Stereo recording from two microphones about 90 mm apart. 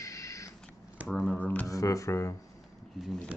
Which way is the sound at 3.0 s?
5° left (ahead or behind).